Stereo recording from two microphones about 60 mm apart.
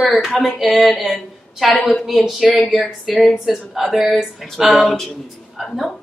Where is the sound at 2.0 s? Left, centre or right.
Centre.